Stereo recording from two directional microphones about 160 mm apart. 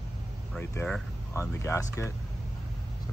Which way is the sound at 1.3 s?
15° left (ahead or behind).